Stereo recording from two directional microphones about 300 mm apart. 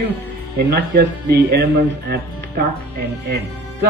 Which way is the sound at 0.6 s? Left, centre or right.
Right.